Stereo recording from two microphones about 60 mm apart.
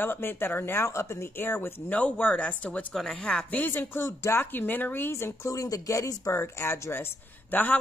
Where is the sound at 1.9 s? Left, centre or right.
Left.